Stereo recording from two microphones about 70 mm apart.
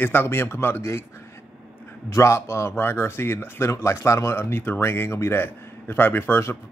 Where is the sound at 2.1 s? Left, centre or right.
Left.